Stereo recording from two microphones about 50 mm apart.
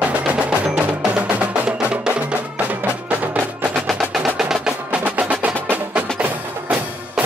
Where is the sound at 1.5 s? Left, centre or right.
Right.